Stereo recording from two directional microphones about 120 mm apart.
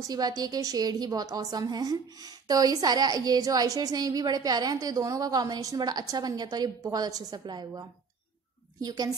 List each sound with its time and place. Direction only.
0.0 s a woman's voice: 30° right (ahead or behind)
8.8 s a woman's voice: 35° right (ahead or behind)